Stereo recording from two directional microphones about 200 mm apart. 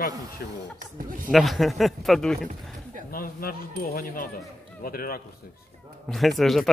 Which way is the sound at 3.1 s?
45° left (ahead or behind).